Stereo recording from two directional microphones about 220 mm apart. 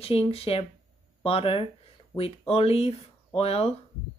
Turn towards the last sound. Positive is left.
turn(degrees=25)  # may be behind; listen again after turning